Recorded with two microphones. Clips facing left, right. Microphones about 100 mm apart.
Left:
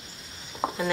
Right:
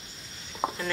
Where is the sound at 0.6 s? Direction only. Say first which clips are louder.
Left 1 dB; 10° left (ahead or behind).